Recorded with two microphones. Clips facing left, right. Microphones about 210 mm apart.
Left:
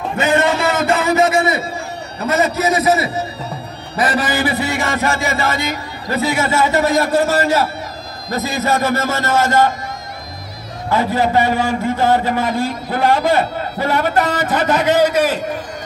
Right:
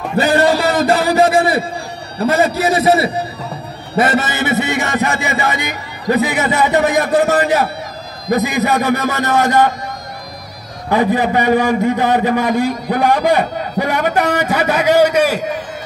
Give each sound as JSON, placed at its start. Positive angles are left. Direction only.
{"t": 0.2, "sound": "a sound", "side_deg": -35}
{"t": 2.1, "sound": "a man's voice", "side_deg": -30}
{"t": 10.9, "sound": "a man's voice", "side_deg": -15}